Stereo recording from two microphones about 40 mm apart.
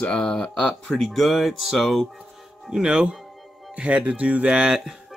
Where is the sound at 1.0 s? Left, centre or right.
Centre.